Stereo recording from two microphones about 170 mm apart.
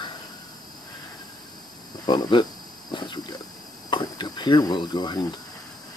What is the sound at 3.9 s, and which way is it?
Cricket, 25° left (ahead or behind).